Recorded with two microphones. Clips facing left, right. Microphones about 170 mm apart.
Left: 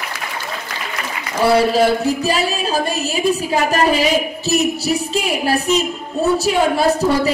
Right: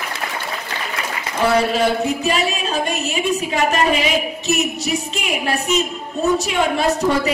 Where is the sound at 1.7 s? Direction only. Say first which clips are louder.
Left 3 dB; 35° left (ahead or behind).